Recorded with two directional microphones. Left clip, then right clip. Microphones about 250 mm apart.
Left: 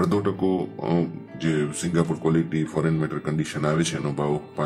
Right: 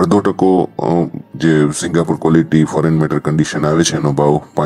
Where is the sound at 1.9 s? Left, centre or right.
Right.